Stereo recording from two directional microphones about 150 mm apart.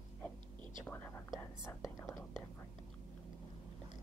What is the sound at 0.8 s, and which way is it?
Whispering, 15° left (ahead or behind).